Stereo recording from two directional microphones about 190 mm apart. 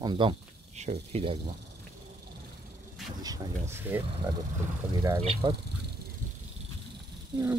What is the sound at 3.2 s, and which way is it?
Speech, 20° right (ahead or behind).